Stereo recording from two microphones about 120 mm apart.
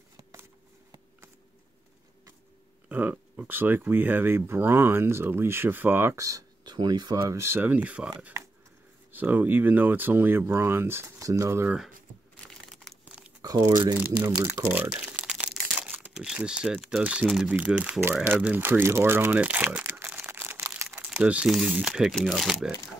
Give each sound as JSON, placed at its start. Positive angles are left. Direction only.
{"t": 2.9, "sound": "speech", "side_deg": -15}
{"t": 12.4, "sound": "crumpling", "side_deg": 0}
{"t": 13.4, "sound": "speech", "side_deg": -30}
{"t": 13.9, "sound": "speech", "side_deg": -20}
{"t": 15.7, "sound": "crumpling", "side_deg": -5}
{"t": 16.7, "sound": "speech", "side_deg": -5}
{"t": 20.9, "sound": "speech", "side_deg": -5}